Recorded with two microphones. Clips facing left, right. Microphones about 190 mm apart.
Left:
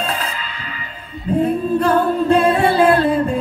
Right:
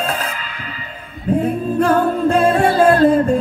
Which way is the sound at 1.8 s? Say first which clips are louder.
Right 2 dB; 45° right (ahead or behind).